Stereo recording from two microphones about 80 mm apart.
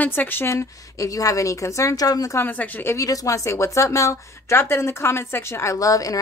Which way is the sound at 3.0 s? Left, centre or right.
Left.